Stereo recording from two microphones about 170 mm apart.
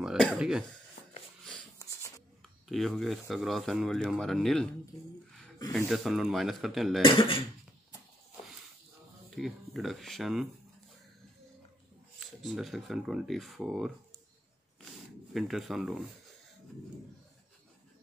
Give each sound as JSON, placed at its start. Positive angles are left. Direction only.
{"t": 0.0, "sound": "throat clearing", "side_deg": 0}
{"t": 1.8, "sound": "writing", "side_deg": 20}
{"t": 2.7, "sound": "speech", "side_deg": 0}
{"t": 5.9, "sound": "speech", "side_deg": 0}
{"t": 7.0, "sound": "speech", "side_deg": 30}
{"t": 9.3, "sound": "speech", "side_deg": 0}
{"t": 12.2, "sound": "speech", "side_deg": 0}
{"t": 15.3, "sound": "speech", "side_deg": 0}